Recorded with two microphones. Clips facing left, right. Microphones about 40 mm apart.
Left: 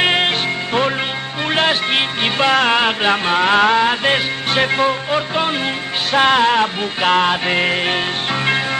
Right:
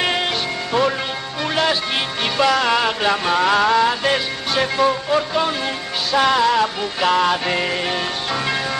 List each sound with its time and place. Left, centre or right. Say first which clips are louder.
0.0 s music: left 5 dB; left
1.5 s music: left 3 dB; left
6.1 s music: left 2 dB; left